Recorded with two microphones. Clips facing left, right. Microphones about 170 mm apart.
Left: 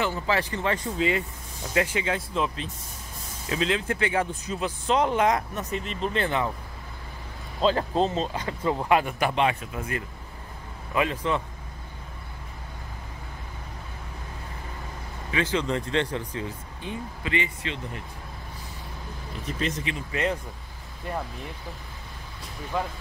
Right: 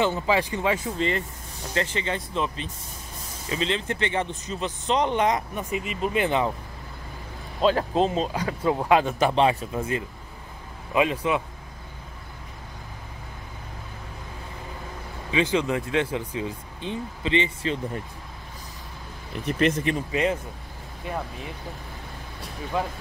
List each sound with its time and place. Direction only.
0.0 s speech: 20° right (ahead or behind); by 5.4 s centre (ahead or behind)
5.5 s speech: 10° right (ahead or behind)
7.6 s speech: 5° right (ahead or behind); by 9.3 s 20° right (ahead or behind)
9.3 s speech: 35° right (ahead or behind); by 11.4 s 15° right (ahead or behind)
15.3 s speech: 15° right (ahead or behind)
19.4 s speech: 60° right (ahead or behind)
20.1 s speech: 15° right (ahead or behind)